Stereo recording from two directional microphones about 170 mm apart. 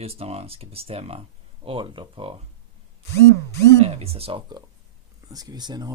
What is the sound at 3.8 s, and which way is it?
Speech, 35° right (ahead or behind).